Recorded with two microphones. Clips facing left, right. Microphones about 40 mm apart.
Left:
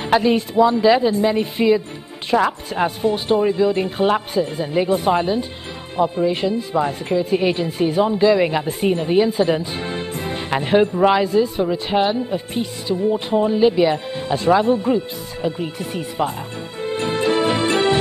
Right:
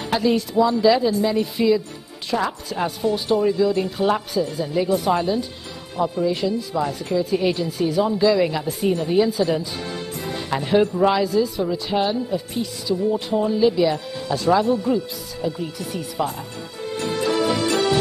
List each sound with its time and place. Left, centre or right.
0.0 s speech: left
16.8 s music: left